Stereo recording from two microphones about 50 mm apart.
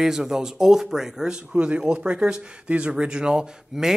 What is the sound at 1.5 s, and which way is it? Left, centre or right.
Speech, right.